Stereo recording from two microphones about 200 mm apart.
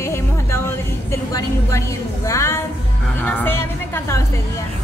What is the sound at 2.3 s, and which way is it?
A woman's voice, 15° left (ahead or behind).